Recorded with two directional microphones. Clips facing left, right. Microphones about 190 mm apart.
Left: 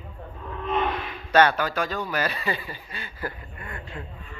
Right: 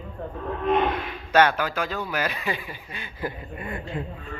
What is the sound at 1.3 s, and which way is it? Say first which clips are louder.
Speech: even; 10° right (ahead or behind).